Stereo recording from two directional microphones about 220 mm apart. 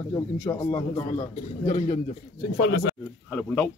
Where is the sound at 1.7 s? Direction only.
30° left (ahead or behind).